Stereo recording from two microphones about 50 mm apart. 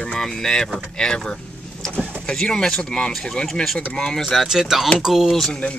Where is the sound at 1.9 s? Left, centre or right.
Right.